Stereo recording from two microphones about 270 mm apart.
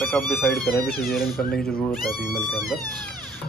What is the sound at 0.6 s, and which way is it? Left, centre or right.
Speech, left.